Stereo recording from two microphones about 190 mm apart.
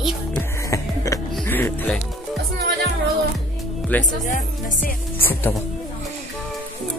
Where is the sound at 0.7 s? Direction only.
15° left (ahead or behind).